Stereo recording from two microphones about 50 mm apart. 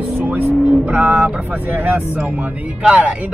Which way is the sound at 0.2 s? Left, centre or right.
Right.